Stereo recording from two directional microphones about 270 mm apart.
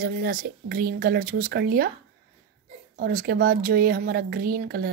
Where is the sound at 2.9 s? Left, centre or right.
Right.